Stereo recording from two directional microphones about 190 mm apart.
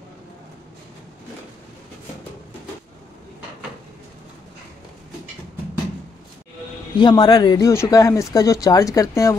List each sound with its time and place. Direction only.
7.0 s speech: 25° left (ahead or behind)